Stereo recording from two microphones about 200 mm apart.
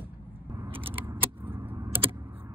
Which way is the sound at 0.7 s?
25° right (ahead or behind).